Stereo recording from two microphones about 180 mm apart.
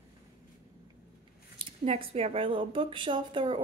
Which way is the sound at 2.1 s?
35° right (ahead or behind).